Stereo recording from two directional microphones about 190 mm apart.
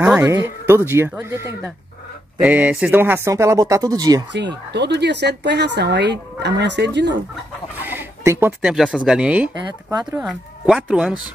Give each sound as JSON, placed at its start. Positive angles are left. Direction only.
{"t": 0.0, "sound": "speech", "side_deg": -10}
{"t": 4.7, "sound": "speech", "side_deg": -65}
{"t": 7.8, "sound": "a sound", "side_deg": -10}
{"t": 8.7, "sound": "speech", "side_deg": -5}